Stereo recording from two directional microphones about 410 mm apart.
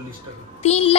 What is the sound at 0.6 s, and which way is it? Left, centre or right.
Speech, centre.